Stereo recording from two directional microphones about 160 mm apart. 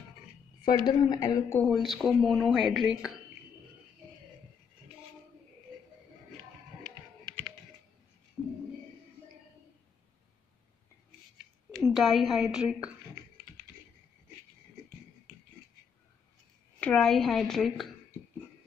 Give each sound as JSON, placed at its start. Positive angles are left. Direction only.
{"t": 0.7, "sound": "a woman's voice", "side_deg": 25}
{"t": 1.6, "sound": "a woman's voice", "side_deg": 0}
{"t": 6.8, "sound": "computer keyboard", "side_deg": -25}
{"t": 8.4, "sound": "a sound", "side_deg": -5}
{"t": 11.8, "sound": "a woman's voice", "side_deg": 0}
{"t": 16.8, "sound": "a woman's voice", "side_deg": 5}